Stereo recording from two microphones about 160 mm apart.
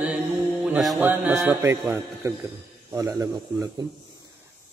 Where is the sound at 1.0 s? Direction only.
10° right (ahead or behind).